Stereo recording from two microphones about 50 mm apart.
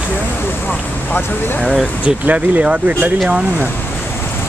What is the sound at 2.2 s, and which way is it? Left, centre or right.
Speech, right.